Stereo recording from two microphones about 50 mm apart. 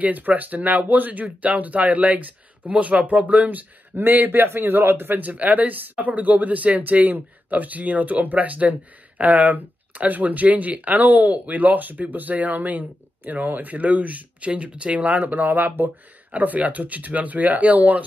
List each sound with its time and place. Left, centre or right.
0.0 s speech: right